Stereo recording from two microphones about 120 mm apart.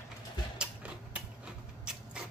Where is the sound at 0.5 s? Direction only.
10° right (ahead or behind).